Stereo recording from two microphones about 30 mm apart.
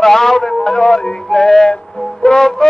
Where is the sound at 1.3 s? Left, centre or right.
Centre.